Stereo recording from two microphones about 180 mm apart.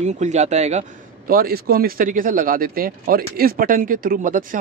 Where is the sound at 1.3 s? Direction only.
55° right (ahead or behind).